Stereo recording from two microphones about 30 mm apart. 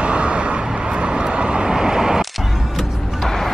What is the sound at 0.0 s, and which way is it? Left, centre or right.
Vehicle, right.